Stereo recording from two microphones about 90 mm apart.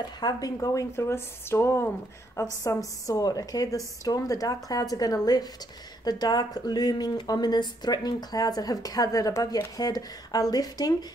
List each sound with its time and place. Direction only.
0.0 s a woman's voice: 50° left (ahead or behind)